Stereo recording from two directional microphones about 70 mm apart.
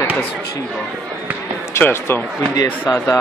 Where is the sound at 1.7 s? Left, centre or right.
Left.